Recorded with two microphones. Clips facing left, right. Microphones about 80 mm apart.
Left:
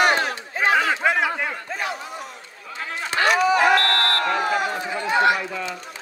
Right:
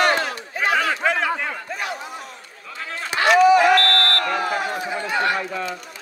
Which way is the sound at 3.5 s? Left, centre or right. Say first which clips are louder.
Right 2 dB; left.